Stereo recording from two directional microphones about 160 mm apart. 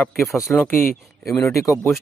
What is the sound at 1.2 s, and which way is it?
Speech, 20° left (ahead or behind).